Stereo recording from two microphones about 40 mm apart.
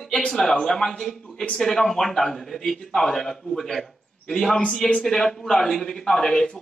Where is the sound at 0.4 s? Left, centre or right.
Centre.